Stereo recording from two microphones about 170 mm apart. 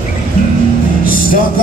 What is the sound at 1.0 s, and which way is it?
Music, 55° left (ahead or behind).